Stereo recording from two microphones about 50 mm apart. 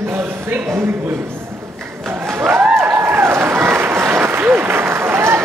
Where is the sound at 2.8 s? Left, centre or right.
Right.